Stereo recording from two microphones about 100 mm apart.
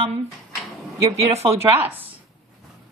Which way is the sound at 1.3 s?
85° right.